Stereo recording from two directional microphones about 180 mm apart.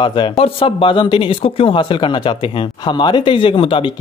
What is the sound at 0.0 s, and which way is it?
Speech, 25° left (ahead or behind).